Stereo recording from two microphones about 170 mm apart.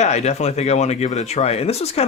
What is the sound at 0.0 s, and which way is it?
Speech, 40° left (ahead or behind).